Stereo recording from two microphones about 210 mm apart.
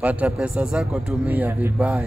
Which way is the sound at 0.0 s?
5° right (ahead or behind).